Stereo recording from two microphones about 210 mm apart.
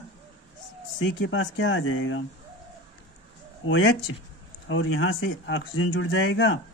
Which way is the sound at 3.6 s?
65° left (ahead or behind).